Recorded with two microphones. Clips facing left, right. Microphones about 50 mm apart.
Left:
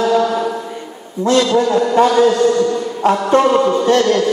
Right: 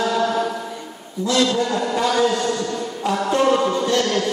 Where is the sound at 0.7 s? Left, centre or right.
Left.